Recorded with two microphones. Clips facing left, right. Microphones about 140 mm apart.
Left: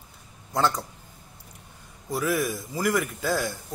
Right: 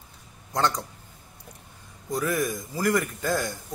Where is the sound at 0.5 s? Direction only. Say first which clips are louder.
Left 1 dB; 5° left (ahead or behind).